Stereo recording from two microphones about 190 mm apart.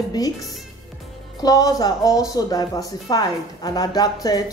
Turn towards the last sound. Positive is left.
turn(degrees=20)  # may be behind; listen again after turning